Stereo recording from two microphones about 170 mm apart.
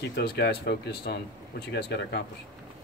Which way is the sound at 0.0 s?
70° left (ahead or behind).